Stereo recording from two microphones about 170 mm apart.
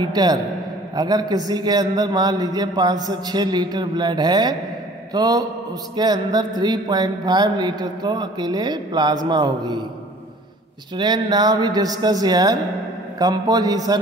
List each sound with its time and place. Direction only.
0.1 s speech: 25° right (ahead or behind)
11.0 s speech: 25° right (ahead or behind)